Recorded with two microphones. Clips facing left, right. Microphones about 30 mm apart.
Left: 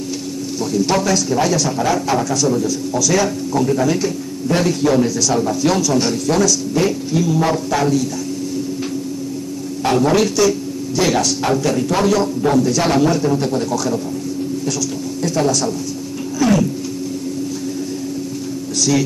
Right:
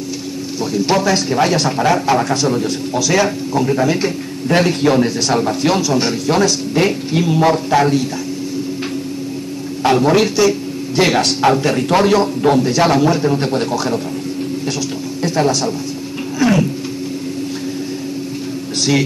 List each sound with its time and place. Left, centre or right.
0.7 s speech: right
1.1 s speech: right
3.1 s speech: right
4.5 s speech: right
5.7 s speech: right
9.8 s speech: right
11.0 s speech: right
15.2 s speech: right
16.3 s cat: right
18.8 s speech: right